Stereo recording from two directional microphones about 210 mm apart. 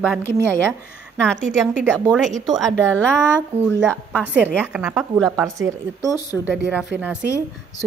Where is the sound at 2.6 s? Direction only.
5° left (ahead or behind).